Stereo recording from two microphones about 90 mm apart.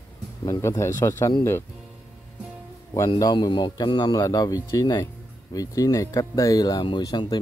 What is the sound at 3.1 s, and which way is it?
Speech, 45° left (ahead or behind).